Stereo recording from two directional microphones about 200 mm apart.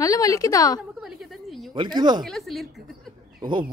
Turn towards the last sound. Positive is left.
turn(degrees=-25)  # may be behind; listen again after turning